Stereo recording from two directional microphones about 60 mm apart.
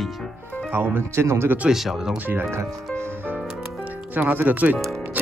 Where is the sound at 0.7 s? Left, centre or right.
Right.